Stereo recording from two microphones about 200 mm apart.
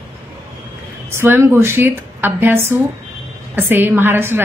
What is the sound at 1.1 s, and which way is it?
Speech, 10° right (ahead or behind).